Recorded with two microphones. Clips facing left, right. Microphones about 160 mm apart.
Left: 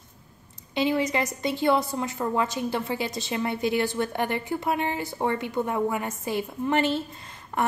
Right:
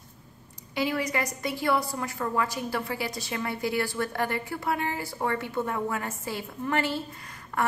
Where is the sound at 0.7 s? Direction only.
25° left (ahead or behind).